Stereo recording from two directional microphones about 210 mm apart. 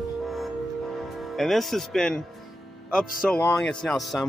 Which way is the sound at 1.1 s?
Centre (ahead or behind).